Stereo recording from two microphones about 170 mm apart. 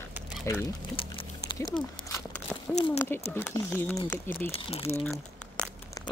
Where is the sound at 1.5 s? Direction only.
25° left (ahead or behind).